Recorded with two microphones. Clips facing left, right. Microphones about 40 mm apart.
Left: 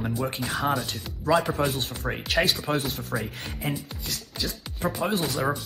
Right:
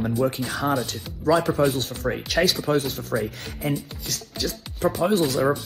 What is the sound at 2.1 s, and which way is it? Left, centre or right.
Speech, centre.